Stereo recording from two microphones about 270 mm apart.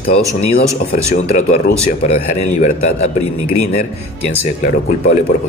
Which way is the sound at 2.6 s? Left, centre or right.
Left.